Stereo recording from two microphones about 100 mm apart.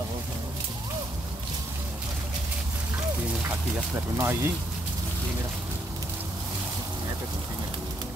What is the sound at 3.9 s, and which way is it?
Speech, 25° right (ahead or behind).